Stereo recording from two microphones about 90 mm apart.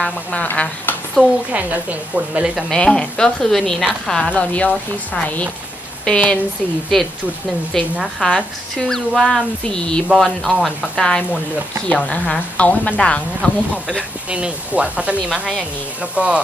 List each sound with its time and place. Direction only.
0.0 s speech: 15° left (ahead or behind)
1.2 s speech: 15° right (ahead or behind)
2.7 s a woman's voice: 10° left (ahead or behind)
8.0 s speech: 5° left (ahead or behind)
11.0 s a woman's voice: 10° left (ahead or behind)
13.8 s speech: 10° right (ahead or behind)